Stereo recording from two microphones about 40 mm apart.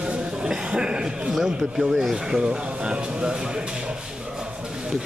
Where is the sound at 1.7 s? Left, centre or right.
Centre.